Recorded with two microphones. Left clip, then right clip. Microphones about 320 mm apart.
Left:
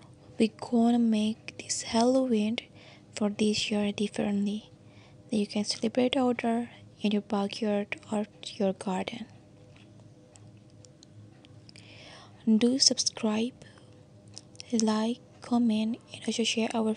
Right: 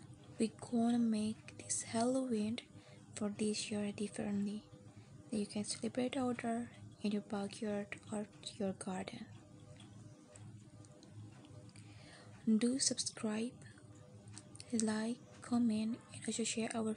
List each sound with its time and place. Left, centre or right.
0.4 s a woman's voice: left
12.0 s a woman's voice: left
14.6 s speech: left